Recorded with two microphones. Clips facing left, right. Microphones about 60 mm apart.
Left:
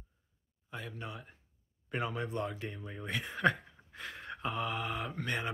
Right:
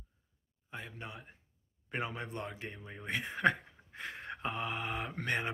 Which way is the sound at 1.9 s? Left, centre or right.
Right.